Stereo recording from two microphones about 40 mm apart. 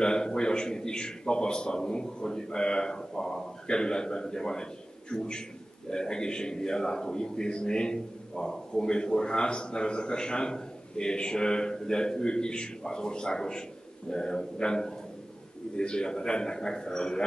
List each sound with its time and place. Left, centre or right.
0.0 s a man's voice: centre